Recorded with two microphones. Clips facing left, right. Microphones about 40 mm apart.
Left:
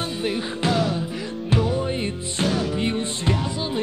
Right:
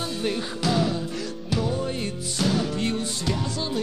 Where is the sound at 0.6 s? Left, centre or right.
Left.